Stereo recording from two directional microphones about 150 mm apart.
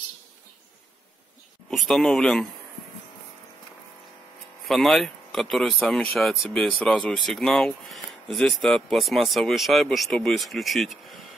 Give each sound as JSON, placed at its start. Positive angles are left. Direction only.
{"t": 1.9, "sound": "speech", "side_deg": 5}
{"t": 4.6, "sound": "speech", "side_deg": 0}